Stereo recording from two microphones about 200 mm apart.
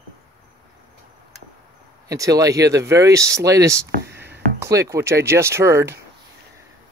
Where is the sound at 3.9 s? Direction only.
60° right (ahead or behind).